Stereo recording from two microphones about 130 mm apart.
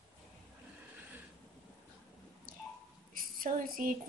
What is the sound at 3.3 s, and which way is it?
Speech, 90° right.